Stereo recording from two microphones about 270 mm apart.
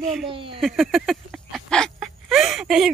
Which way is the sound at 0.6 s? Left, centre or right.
Centre.